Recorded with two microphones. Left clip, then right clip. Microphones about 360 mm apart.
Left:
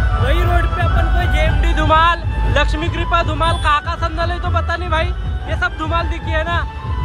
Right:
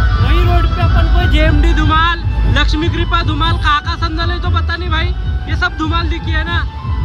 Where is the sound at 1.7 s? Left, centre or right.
Centre.